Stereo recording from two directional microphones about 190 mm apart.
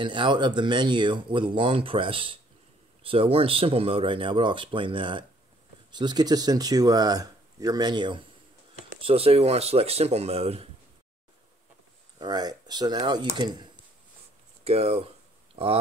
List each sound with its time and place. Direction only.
0.0 s speech: 25° right (ahead or behind)
12.2 s speech: 20° right (ahead or behind)